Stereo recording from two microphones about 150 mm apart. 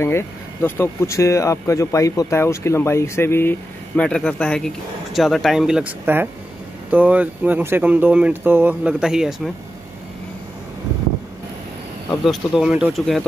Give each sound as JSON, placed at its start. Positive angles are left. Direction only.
{"t": 0.0, "sound": "speech", "side_deg": 15}
{"t": 12.3, "sound": "speech", "side_deg": -5}